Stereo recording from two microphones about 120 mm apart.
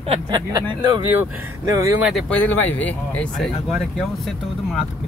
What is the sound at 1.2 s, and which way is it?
Speech, 25° right (ahead or behind).